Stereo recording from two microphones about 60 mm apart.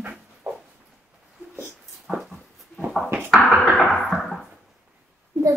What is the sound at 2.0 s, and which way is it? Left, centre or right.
Dog, centre.